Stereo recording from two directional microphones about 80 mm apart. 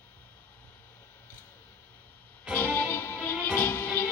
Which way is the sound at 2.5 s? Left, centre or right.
Left.